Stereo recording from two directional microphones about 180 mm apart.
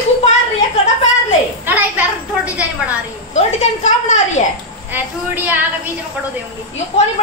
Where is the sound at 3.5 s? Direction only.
40° left (ahead or behind).